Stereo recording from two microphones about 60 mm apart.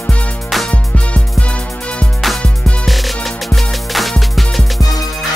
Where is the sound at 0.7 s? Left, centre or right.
Centre.